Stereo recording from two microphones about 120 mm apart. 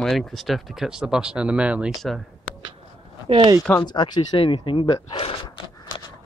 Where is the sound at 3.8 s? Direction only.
35° left (ahead or behind).